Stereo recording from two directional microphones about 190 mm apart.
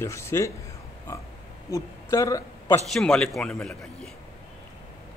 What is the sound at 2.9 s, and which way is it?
A man's voice, 5° left (ahead or behind).